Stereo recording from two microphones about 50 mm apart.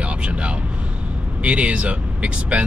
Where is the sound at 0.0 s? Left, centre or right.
Right.